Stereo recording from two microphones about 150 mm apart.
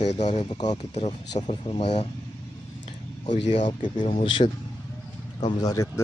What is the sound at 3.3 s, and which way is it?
Speech, 55° left (ahead or behind).